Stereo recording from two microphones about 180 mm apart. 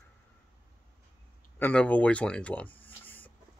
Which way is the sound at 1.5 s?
10° left (ahead or behind).